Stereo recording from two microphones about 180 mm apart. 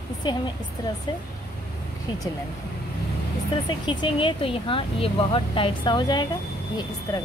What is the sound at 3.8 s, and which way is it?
Speech, 25° left (ahead or behind).